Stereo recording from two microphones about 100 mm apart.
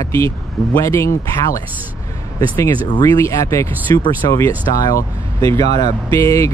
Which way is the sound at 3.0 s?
30° left (ahead or behind).